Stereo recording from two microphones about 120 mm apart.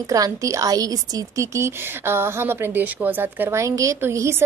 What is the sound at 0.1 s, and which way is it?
A woman's voice, 30° right (ahead or behind).